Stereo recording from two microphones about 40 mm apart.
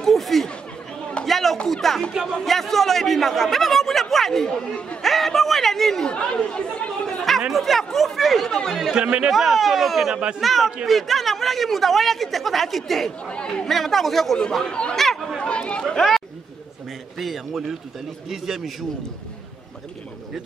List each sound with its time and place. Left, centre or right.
0.0 s chatter: centre
1.2 s a sound: centre
1.7 s speech: centre
4.5 s speech: left
5.0 s a sound: centre
6.0 s speech: left
7.5 s speech: centre
14.5 s speech: left
15.0 s chatter: centre
15.3 s chatter: left
15.9 s speech: centre
17.2 s a man's voice: centre